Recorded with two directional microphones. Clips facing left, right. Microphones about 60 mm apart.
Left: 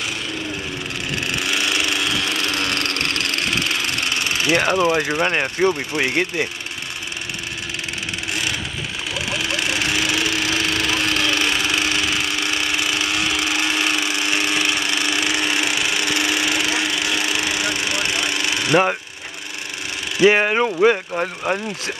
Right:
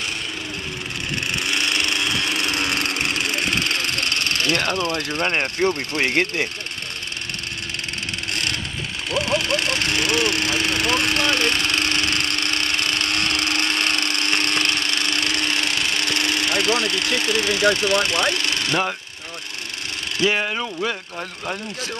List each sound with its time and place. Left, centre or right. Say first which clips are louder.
1.2 s wood: left 1 dB; centre
8.3 s vehicle: left 2 dB; centre
18.3 s a sound: left 4 dB; centre
20.2 s speech: left 8 dB; left